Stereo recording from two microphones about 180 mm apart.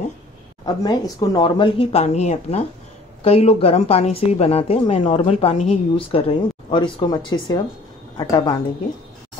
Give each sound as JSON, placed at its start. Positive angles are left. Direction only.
{"t": 0.7, "sound": "a woman's voice", "side_deg": 20}